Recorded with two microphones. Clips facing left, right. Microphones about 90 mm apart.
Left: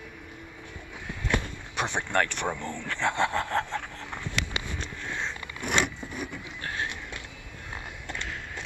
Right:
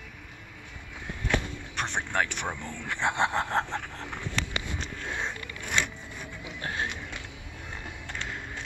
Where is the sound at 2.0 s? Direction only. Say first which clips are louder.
Left 2 dB; 5° right (ahead or behind).